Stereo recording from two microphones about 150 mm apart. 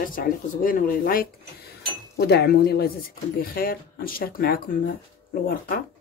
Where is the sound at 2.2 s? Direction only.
90° left.